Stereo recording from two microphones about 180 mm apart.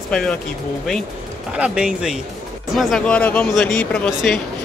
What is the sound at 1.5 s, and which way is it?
Speech, 5° right (ahead or behind).